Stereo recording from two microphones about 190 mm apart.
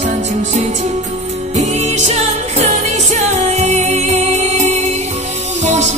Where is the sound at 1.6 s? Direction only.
35° right (ahead or behind).